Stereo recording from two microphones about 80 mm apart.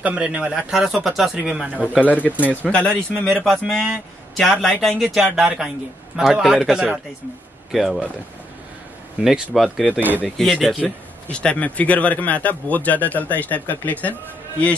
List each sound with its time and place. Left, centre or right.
0.0 s speech: centre
2.6 s a man's voice: centre
9.2 s a man's voice: centre
9.8 s speech: right
10.2 s a man's voice: centre
11.2 s speech: centre